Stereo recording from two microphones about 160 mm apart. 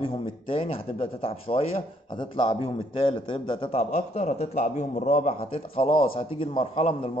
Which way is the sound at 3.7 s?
45° left (ahead or behind).